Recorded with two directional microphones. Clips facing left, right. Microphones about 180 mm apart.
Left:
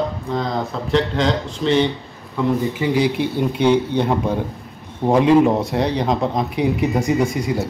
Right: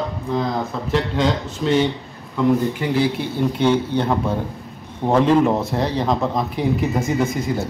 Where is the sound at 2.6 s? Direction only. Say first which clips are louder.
Left 1 dB; 10° left (ahead or behind).